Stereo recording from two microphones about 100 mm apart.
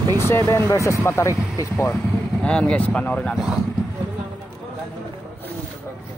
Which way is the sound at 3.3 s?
5° right (ahead or behind).